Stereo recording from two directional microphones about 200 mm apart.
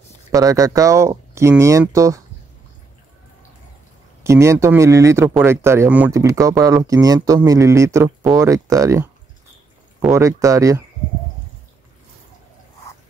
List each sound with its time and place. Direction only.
0.3 s speech: 15° right (ahead or behind)
4.2 s speech: 15° right (ahead or behind)